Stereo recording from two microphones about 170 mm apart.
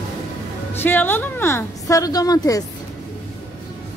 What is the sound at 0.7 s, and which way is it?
A woman's voice, 10° left (ahead or behind).